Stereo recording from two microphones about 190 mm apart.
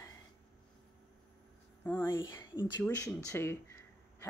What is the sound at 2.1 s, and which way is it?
Speech, 25° left (ahead or behind).